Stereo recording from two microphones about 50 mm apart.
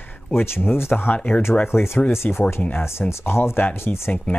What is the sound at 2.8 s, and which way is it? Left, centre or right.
Speech, left.